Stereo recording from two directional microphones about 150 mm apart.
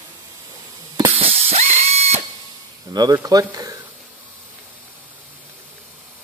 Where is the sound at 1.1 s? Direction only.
40° right (ahead or behind).